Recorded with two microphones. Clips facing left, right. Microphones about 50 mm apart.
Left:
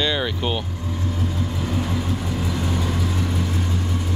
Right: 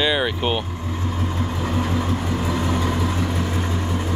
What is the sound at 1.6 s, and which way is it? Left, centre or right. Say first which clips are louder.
Vehicle: right 2 dB; right.